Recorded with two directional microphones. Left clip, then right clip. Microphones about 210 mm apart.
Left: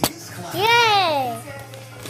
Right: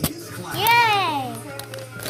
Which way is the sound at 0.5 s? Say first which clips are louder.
Left 1 dB; 30° left (ahead or behind).